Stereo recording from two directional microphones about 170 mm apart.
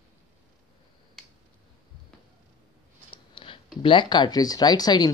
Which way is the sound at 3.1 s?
30° left (ahead or behind).